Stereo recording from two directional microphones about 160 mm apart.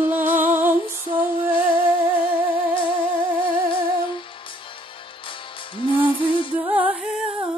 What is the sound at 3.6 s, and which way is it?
Music, 30° left (ahead or behind).